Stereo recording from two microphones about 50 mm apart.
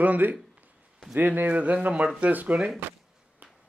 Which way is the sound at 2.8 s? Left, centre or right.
Right.